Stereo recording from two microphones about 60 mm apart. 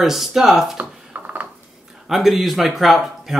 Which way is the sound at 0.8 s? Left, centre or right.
Right.